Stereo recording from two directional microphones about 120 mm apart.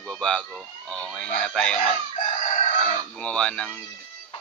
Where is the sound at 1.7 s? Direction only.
55° left (ahead or behind).